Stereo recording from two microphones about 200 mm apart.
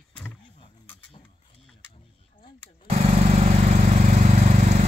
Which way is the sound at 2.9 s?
30° right (ahead or behind).